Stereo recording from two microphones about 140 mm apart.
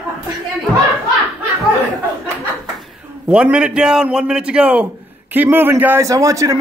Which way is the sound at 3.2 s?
10° right (ahead or behind).